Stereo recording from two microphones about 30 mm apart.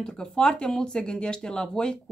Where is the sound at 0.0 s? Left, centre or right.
Left.